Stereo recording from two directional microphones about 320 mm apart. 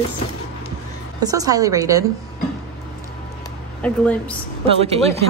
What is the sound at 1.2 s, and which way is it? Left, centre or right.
Speech, centre.